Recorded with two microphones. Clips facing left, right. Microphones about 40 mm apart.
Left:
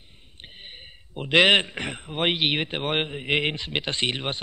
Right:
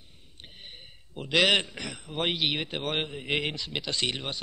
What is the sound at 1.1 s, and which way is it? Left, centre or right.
A man's voice, left.